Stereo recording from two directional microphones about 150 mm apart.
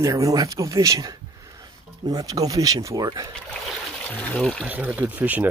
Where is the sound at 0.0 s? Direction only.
20° right (ahead or behind).